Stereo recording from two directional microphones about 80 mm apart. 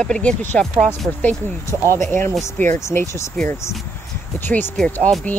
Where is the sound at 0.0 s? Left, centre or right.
Centre.